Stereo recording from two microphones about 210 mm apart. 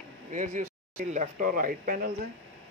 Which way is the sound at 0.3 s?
35° right (ahead or behind).